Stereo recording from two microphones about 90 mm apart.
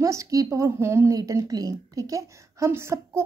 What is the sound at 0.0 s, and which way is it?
A woman's voice, 35° right (ahead or behind).